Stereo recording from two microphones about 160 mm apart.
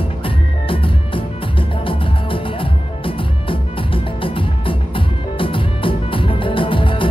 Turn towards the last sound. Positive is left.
turn(degrees=30)  # may be behind; listen again after turning